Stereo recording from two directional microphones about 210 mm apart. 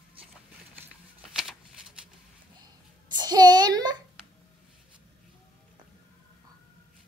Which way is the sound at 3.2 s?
20° right (ahead or behind).